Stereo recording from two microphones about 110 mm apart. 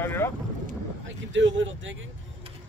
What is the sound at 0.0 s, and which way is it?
Boat, 20° left (ahead or behind).